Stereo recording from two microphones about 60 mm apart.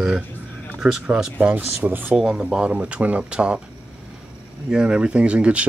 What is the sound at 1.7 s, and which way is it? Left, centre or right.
Speech, right.